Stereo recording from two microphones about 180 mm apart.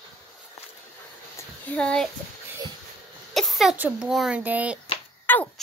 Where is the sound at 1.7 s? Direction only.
5° left (ahead or behind).